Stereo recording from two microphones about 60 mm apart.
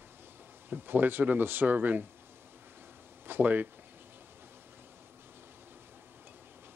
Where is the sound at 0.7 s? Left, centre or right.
Right.